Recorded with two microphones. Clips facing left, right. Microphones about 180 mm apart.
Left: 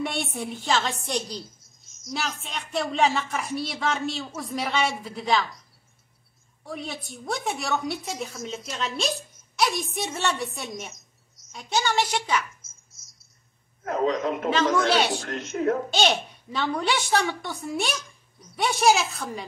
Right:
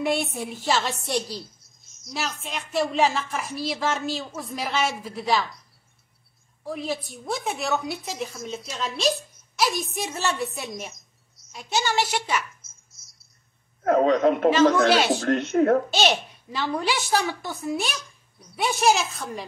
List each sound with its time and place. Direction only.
0.0 s a woman's voice: centre (ahead or behind)
6.6 s a woman's voice: centre (ahead or behind)
13.8 s speech: 65° right (ahead or behind)
16.5 s a woman's voice: centre (ahead or behind)